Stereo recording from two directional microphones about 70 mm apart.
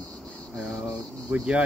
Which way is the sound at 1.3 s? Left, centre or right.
Centre.